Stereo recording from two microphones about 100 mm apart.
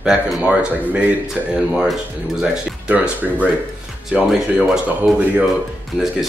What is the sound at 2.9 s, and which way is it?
Speech, 15° right (ahead or behind).